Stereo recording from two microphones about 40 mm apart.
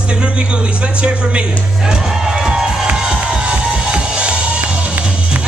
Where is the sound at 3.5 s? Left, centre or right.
Right.